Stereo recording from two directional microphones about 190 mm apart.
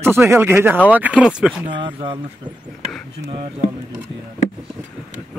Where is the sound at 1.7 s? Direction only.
25° right (ahead or behind).